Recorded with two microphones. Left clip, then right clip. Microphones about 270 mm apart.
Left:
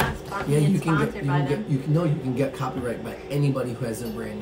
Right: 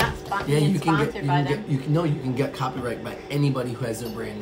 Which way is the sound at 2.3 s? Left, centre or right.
Centre.